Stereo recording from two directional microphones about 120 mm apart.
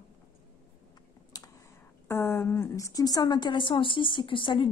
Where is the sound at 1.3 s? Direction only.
30° left (ahead or behind).